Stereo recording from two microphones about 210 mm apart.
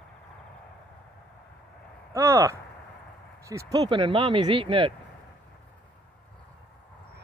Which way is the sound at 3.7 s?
20° right (ahead or behind).